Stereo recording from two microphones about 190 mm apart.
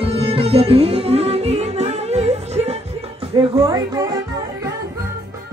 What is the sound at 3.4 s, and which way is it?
Music, 20° right (ahead or behind).